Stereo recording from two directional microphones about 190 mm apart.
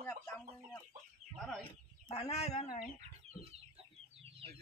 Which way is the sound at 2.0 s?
30° left (ahead or behind).